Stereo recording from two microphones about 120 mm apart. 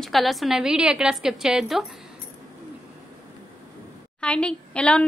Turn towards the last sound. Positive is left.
turn(degrees=10)  # may be behind; listen again after turning